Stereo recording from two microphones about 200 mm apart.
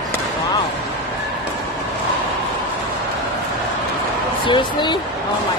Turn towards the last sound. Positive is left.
turn(degrees=25)  # may be behind; listen again after turning